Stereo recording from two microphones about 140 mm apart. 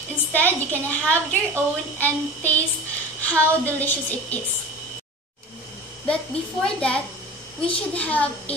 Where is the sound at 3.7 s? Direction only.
10° left (ahead or behind).